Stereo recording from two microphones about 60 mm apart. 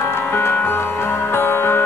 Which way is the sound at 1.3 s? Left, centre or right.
Left.